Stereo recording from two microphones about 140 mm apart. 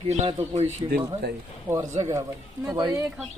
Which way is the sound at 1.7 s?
20° right (ahead or behind).